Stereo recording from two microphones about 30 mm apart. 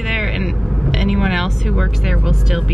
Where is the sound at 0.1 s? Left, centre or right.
Centre.